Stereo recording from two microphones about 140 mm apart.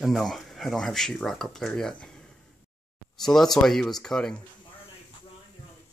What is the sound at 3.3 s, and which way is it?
Speech, 5° left (ahead or behind).